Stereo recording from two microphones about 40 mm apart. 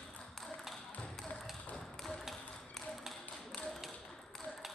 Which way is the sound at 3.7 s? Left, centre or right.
Centre.